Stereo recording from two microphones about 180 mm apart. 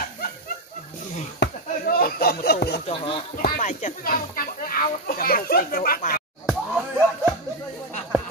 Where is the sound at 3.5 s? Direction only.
40° left (ahead or behind).